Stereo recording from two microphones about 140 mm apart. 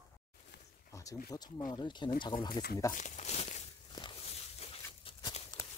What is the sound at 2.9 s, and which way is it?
Speech, 60° left (ahead or behind).